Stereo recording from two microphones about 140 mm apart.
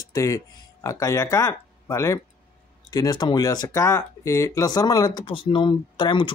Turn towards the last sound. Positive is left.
turn(degrees=35)  # may be behind; listen again after turning